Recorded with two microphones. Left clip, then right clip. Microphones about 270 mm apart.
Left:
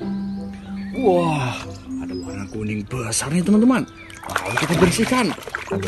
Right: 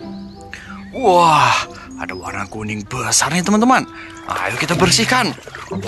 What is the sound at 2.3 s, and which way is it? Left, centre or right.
Speech, centre.